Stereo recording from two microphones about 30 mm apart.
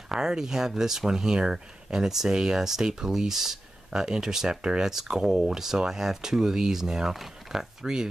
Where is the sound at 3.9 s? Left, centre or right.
Right.